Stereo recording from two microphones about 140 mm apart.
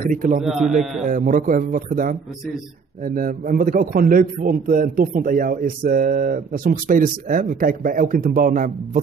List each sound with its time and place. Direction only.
0.0 s a man's voice: 70° right (ahead or behind)
0.4 s a man's voice: centre (ahead or behind)
1.0 s a man's voice: 75° right (ahead or behind)